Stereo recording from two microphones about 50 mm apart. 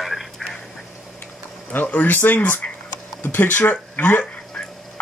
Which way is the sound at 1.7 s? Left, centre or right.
Left.